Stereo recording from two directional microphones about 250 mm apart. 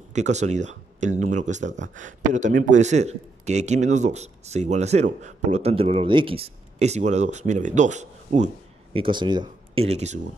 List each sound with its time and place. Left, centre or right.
0.1 s speech: right